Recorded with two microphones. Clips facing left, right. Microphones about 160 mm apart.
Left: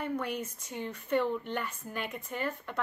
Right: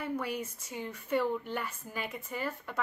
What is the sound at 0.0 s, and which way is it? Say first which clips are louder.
A woman's voice: left 1 dB; 5° right (ahead or behind).